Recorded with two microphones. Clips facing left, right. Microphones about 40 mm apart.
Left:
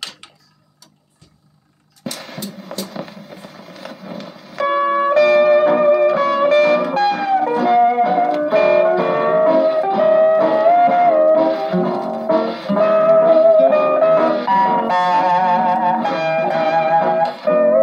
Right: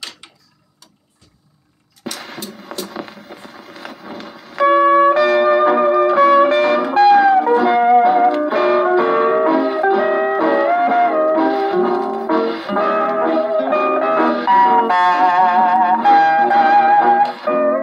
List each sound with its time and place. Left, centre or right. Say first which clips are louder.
2.0 s music: even; centre
4.1 s music: even; centre